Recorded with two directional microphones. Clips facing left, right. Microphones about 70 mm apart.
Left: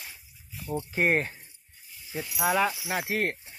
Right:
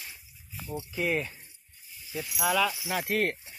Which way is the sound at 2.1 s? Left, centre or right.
Left.